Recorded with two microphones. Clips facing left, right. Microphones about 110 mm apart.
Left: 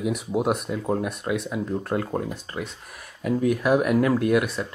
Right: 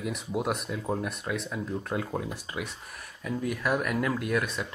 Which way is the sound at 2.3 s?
10° right (ahead or behind).